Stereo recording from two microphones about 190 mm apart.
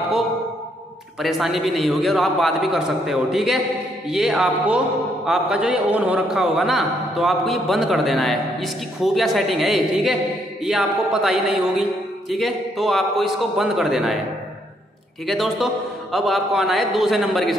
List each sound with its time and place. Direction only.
1.2 s a man's voice: centre (ahead or behind)
15.2 s a man's voice: centre (ahead or behind)